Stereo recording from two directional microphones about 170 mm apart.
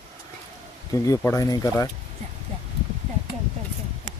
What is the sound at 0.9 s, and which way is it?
Speech, 20° left (ahead or behind).